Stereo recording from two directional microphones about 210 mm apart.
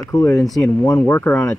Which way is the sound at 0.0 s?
15° left (ahead or behind).